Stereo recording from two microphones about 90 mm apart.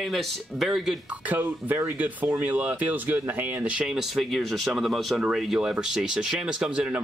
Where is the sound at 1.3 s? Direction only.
20° right (ahead or behind).